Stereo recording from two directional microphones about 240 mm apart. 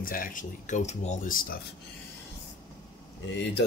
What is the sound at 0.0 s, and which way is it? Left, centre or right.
Speech, left.